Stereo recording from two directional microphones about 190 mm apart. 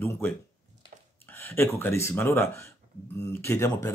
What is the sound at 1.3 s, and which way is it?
Speech, 10° left (ahead or behind).